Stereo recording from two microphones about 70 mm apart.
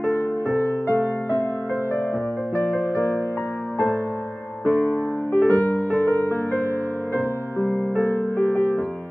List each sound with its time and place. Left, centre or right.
2.5 s music: left
4.6 s music: left
8.0 s music: left